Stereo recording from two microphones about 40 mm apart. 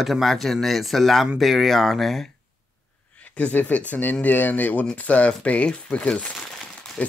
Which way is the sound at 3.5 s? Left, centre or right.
Left.